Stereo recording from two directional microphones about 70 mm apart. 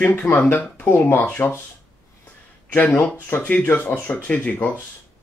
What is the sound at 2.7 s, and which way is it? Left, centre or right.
Speech, left.